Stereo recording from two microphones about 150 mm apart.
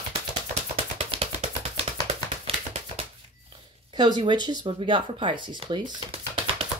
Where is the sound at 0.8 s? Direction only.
40° right (ahead or behind).